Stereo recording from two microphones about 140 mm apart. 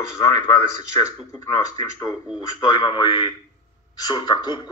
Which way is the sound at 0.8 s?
25° left (ahead or behind).